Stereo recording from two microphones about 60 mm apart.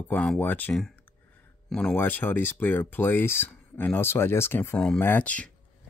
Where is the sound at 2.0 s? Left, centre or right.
Left.